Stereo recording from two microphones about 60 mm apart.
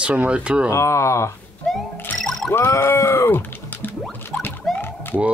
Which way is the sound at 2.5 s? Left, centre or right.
Left.